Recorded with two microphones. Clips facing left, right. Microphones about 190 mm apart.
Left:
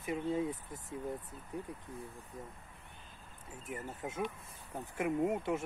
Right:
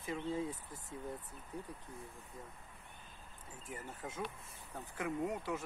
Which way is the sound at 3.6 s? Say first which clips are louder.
Left 5 dB; 20° left (ahead or behind).